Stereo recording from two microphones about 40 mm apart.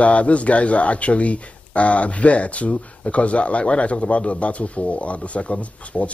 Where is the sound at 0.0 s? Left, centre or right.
Left.